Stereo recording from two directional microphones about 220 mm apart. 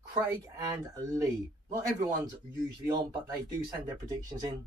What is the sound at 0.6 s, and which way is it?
A man's voice, 15° right (ahead or behind).